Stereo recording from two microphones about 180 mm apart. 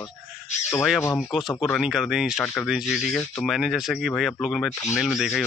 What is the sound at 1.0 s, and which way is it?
Speech, 15° left (ahead or behind).